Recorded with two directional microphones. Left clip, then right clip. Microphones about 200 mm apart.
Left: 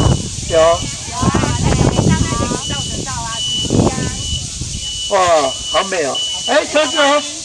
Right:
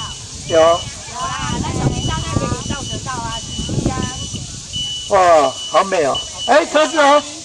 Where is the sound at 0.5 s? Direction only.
15° right (ahead or behind).